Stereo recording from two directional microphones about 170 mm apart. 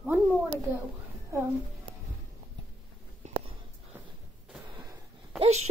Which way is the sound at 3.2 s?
45° right (ahead or behind).